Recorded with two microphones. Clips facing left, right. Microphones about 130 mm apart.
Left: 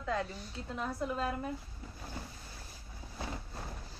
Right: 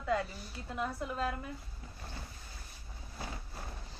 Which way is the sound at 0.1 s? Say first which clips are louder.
Right 2 dB; 5° right (ahead or behind).